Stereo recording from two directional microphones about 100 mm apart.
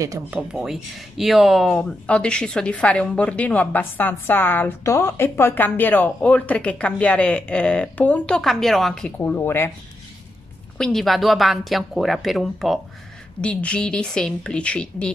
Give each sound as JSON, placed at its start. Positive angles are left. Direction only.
{"t": 0.3, "sound": "speech", "side_deg": -10}
{"t": 9.2, "sound": "speech", "side_deg": 20}
{"t": 10.8, "sound": "speech", "side_deg": 5}
{"t": 13.4, "sound": "speech", "side_deg": 10}